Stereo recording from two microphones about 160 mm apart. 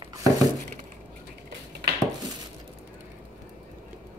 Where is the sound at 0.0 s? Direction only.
20° right (ahead or behind).